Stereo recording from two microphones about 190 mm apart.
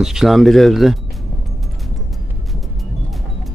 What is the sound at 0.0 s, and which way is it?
Speech, centre (ahead or behind).